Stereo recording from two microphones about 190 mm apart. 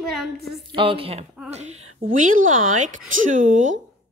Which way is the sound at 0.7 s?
25° right (ahead or behind).